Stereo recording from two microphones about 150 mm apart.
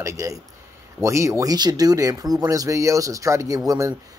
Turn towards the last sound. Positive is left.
turn(degrees=-20)  # may be behind; listen again after turning